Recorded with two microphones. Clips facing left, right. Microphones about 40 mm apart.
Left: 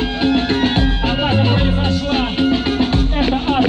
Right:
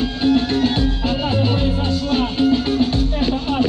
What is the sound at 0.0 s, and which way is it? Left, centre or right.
Music, left.